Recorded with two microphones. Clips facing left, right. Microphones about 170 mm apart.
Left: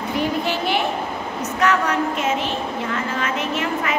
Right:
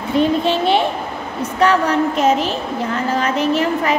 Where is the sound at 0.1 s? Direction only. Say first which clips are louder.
Right 7 dB; 25° right (ahead or behind).